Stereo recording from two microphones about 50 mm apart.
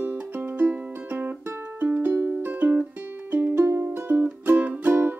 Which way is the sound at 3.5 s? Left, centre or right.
Right.